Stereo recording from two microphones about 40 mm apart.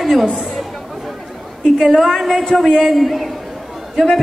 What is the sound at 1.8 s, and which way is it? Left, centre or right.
A woman's voice, centre.